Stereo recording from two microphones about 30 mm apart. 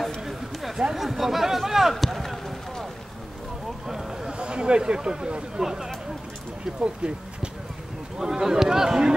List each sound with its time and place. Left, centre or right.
0.2 s a sound: centre
0.9 s speech: centre
2.0 s run: centre
3.8 s a sound: centre
4.3 s speech: right
5.6 s speech: centre
6.8 s speech: right
8.2 s speech: centre